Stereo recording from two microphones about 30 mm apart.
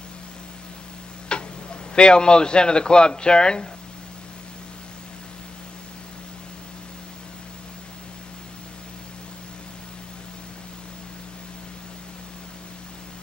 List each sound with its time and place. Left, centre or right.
1.3 s speech: left